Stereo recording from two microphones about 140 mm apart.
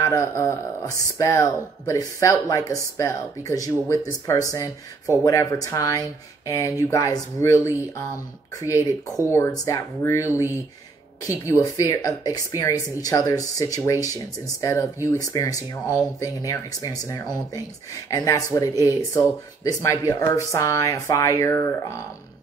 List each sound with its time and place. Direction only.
0.0 s speech: 20° left (ahead or behind)